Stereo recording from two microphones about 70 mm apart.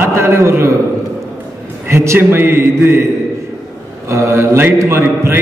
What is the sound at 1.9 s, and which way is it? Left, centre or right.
A man's voice, right.